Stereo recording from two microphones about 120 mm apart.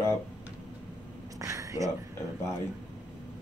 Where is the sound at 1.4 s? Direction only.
25° right (ahead or behind).